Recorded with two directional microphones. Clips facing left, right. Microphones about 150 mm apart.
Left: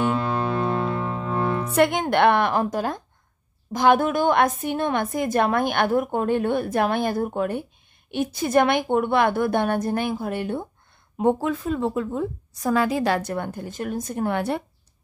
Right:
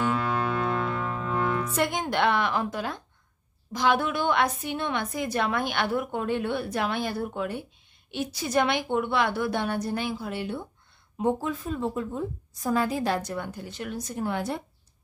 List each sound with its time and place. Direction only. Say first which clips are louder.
0.0 s music: left 3 dB; 30° left (ahead or behind)
1.7 s a woman's voice: left 7 dB; 60° left (ahead or behind)
11.1 s a woman's voice: left 5 dB; 65° left (ahead or behind)